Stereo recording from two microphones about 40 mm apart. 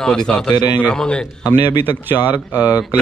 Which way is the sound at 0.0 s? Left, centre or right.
Centre.